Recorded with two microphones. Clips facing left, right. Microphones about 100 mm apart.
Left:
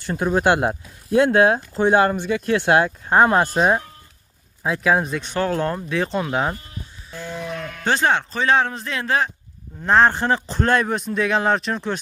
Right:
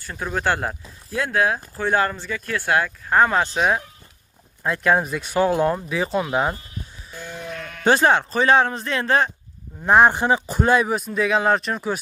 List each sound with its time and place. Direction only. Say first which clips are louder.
0.0 s speech: left 5 dB; 20° left (ahead or behind)
4.6 s speech: even; centre (ahead or behind)
7.4 s sheep: left 3 dB; 40° left (ahead or behind)
7.8 s speech: right 3 dB; 10° right (ahead or behind)
9.8 s speech: right 1 dB; 15° right (ahead or behind)